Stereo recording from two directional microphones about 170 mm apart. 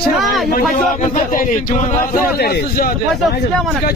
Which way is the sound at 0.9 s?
50° left (ahead or behind).